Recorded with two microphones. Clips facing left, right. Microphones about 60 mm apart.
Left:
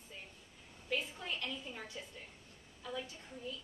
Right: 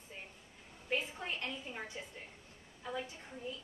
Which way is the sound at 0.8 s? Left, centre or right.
Right.